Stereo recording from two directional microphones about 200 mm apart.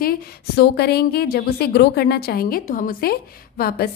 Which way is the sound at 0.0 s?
50° left (ahead or behind).